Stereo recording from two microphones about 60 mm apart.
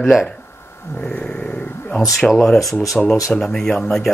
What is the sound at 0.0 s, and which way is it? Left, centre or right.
Speech, centre.